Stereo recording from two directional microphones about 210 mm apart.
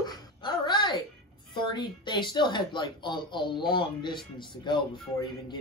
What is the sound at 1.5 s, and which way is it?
Speech, 20° left (ahead or behind).